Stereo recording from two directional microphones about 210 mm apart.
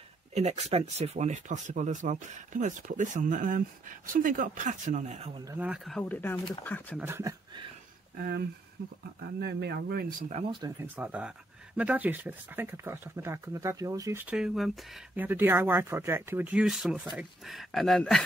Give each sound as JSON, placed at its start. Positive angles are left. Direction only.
{"t": 0.3, "sound": "speech", "side_deg": -30}
{"t": 5.4, "sound": "speech", "side_deg": -10}
{"t": 7.0, "sound": "speech", "side_deg": -10}
{"t": 8.2, "sound": "speech", "side_deg": -50}
{"t": 10.3, "sound": "speech", "side_deg": -25}
{"t": 10.8, "sound": "speech", "side_deg": -5}